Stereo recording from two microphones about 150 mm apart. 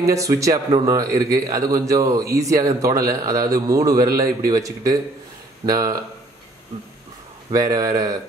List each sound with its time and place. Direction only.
0.0 s a man's voice: 20° right (ahead or behind)
7.5 s a man's voice: 25° right (ahead or behind)